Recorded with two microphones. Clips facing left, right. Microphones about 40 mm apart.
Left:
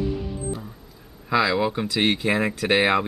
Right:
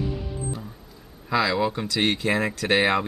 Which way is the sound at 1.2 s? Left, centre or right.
Centre.